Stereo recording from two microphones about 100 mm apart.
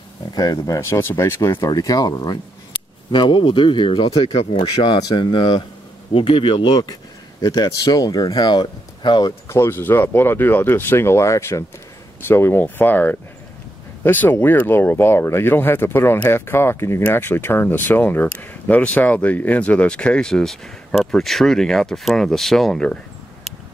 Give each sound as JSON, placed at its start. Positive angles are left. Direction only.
{"t": 0.3, "sound": "speech", "side_deg": 40}
{"t": 0.7, "sound": "speech", "side_deg": 25}
{"t": 1.6, "sound": "speech", "side_deg": 40}
{"t": 9.5, "sound": "speech", "side_deg": 25}